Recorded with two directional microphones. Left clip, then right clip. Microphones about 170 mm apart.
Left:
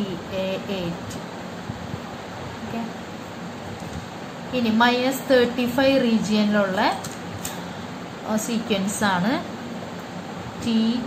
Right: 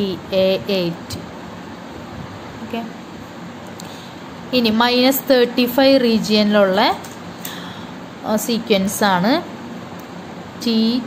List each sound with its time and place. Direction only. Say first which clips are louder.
0.4 s a woman's voice: right 11 dB; 55° right (ahead or behind)
4.5 s a woman's voice: right 4 dB; 55° right (ahead or behind)
8.3 s a woman's voice: right 7 dB; 45° right (ahead or behind)
10.6 s a woman's voice: right 6 dB; 50° right (ahead or behind)